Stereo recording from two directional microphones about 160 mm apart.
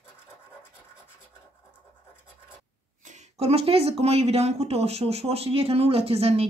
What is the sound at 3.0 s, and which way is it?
Speech, 45° right (ahead or behind).